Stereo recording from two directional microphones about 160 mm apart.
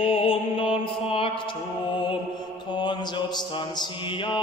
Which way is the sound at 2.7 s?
30° left (ahead or behind).